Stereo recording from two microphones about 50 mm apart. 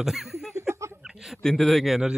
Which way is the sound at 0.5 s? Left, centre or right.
Right.